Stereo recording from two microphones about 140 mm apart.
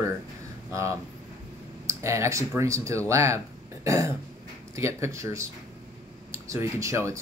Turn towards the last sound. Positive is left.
turn(degrees=-20)  # may be behind; listen again after turning